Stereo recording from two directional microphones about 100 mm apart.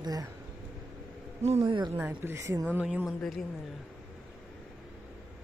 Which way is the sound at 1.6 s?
55° right (ahead or behind).